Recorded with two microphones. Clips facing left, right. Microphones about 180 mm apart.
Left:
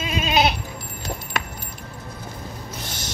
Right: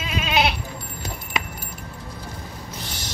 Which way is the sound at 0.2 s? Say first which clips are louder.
Left 2 dB; 40° left (ahead or behind).